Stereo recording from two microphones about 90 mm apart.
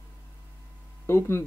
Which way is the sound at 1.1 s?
30° left (ahead or behind).